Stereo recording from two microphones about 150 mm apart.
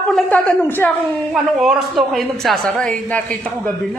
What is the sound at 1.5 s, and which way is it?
Speech, centre (ahead or behind).